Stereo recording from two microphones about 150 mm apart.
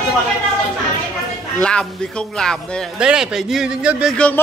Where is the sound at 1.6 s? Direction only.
5° left (ahead or behind).